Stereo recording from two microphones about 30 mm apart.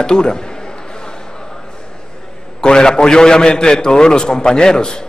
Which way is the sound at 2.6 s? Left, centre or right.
Left.